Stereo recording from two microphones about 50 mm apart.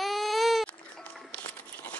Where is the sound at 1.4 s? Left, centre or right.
Left.